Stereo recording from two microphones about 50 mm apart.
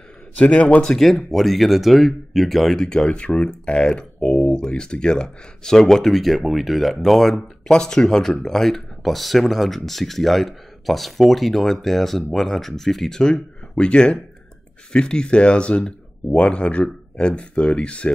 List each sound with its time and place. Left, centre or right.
0.4 s speech: left
0.8 s speech: centre